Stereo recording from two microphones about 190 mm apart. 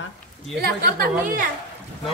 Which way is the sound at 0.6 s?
50° right (ahead or behind).